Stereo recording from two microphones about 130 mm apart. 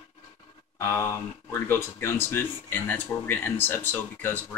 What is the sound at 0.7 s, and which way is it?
Speech, 25° left (ahead or behind).